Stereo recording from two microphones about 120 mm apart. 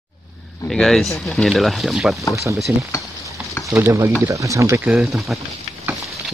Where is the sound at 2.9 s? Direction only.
25° left (ahead or behind).